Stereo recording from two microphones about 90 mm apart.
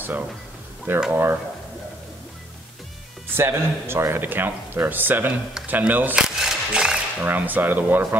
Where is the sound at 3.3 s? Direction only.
25° right (ahead or behind).